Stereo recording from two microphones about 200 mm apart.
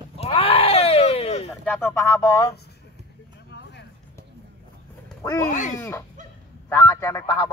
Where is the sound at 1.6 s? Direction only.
10° left (ahead or behind).